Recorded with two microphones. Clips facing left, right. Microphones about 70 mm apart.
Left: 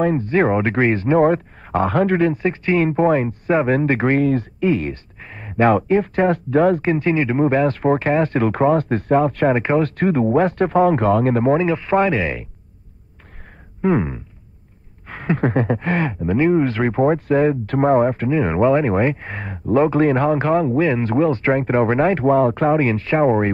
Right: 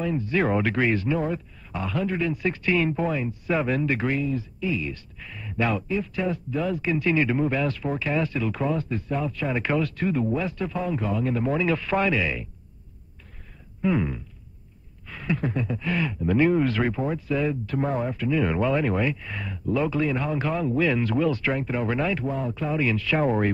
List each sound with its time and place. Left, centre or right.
0.0 s speech: left
2.3 s speech: left
4.2 s speech: left
4.9 s speech: left
9.6 s speech: left
11.5 s speech: left
13.8 s speech: left
16.3 s speech: left
16.9 s speech: left
18.4 s speech: left